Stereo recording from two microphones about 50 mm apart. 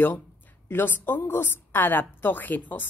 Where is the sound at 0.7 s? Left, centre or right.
Left.